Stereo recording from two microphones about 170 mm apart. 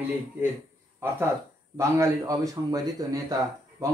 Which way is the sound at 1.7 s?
20° right (ahead or behind).